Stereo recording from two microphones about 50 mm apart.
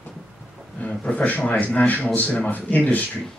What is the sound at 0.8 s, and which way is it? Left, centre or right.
A man's voice, left.